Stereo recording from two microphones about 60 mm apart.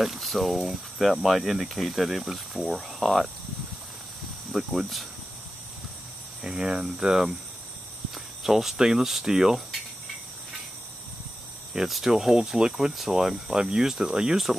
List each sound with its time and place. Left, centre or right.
0.0 s speech: centre
4.5 s speech: centre
6.4 s speech: centre
11.7 s speech: centre